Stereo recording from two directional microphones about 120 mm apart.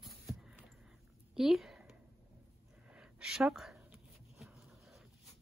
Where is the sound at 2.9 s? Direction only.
5° right (ahead or behind).